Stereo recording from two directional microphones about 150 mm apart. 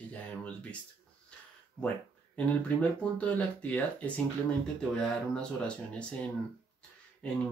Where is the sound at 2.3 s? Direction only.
10° left (ahead or behind).